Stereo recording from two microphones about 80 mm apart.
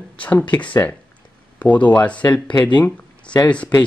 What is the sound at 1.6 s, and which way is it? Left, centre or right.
Speech, centre.